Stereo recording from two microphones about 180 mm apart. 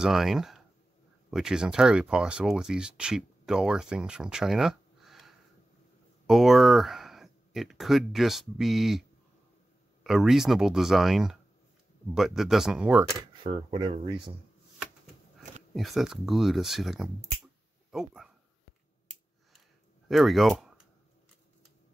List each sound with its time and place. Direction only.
0.0 s speech: centre (ahead or behind)
10.0 s speech: centre (ahead or behind)
13.1 s speech: 25° right (ahead or behind)
15.7 s speech: centre (ahead or behind)
20.1 s speech: centre (ahead or behind)